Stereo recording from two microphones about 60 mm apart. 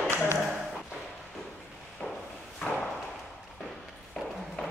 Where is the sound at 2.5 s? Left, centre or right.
Centre.